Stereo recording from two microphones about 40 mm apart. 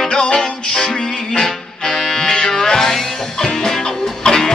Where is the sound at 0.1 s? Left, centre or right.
Centre.